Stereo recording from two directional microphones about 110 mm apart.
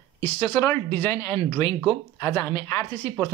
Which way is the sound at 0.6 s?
25° left (ahead or behind).